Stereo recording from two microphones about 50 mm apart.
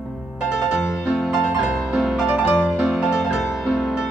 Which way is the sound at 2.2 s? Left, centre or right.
Centre.